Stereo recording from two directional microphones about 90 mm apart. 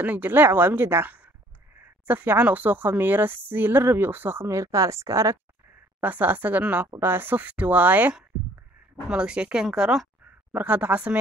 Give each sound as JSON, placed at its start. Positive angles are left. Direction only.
{"t": 0.0, "sound": "speech", "side_deg": -20}
{"t": 5.9, "sound": "a woman's voice", "side_deg": -20}
{"t": 10.5, "sound": "a woman's voice", "side_deg": -15}